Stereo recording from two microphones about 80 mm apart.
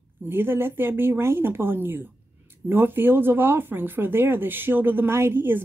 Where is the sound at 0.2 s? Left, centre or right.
Right.